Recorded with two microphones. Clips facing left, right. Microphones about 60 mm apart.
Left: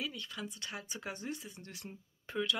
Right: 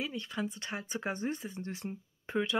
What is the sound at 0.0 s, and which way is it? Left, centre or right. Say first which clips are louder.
A woman's voice: right 5 dB; right.